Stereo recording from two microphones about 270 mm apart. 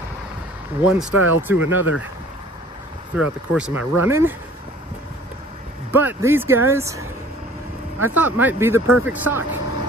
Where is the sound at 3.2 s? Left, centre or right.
Centre.